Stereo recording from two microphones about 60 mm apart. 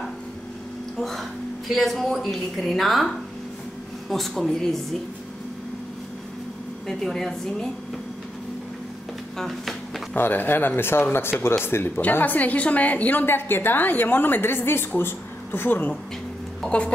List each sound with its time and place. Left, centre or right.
0.9 s a woman's voice: centre
4.1 s a woman's voice: centre
6.9 s a woman's voice: centre
9.4 s a sound: centre
10.1 s a woman's voice: left
12.0 s a woman's voice: left
16.6 s a sound: centre